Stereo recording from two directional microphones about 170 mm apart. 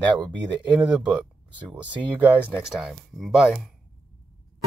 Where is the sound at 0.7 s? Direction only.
5° right (ahead or behind).